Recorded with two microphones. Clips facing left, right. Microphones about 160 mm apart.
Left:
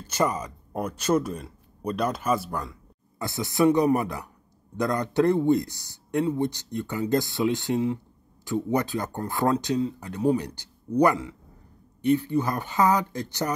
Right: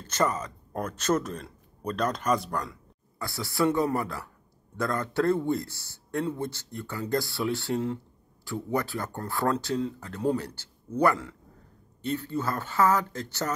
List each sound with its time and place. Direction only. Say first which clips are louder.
0.0 s speech: left 2 dB; 10° left (ahead or behind)
3.2 s speech: left 4 dB; 20° left (ahead or behind)